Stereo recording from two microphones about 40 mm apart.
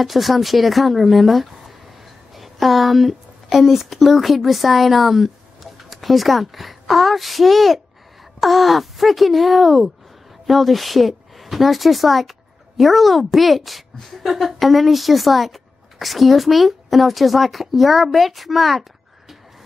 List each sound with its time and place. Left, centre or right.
0.0 s speech: centre